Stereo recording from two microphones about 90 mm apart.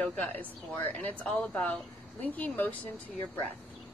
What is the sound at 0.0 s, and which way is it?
A woman's voice, 15° left (ahead or behind).